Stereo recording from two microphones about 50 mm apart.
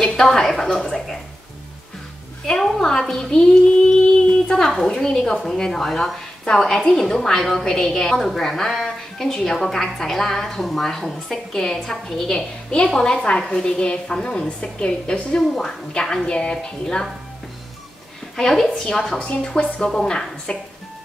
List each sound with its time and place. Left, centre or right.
0.2 s a woman's voice: centre
2.4 s a woman's voice: centre
18.3 s a woman's voice: centre
19.1 s a woman's voice: left